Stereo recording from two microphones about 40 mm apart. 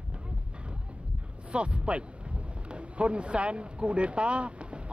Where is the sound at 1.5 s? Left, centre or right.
Right.